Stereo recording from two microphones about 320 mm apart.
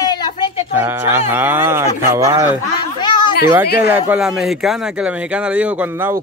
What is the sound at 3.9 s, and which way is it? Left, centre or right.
Speech, centre.